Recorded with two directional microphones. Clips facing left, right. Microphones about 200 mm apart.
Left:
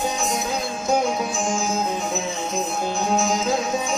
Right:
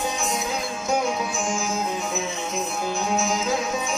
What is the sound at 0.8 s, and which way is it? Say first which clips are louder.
Music: left 3 dB; 35° left (ahead or behind).